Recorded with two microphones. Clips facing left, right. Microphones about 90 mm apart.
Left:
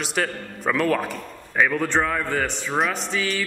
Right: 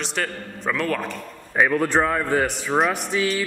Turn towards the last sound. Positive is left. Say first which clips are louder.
# right 3 dB
turn(degrees=-5)  # may be behind; listen again after turning